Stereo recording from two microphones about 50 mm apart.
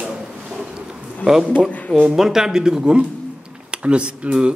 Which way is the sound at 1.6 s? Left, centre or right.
Left.